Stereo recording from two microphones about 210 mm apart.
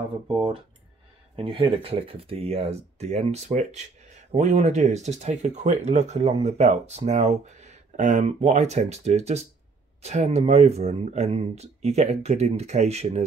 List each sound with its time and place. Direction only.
0.4 s speech: 25° right (ahead or behind)